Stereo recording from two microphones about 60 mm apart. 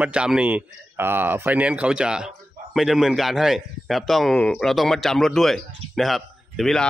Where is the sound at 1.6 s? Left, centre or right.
Right; by 6.9 s centre.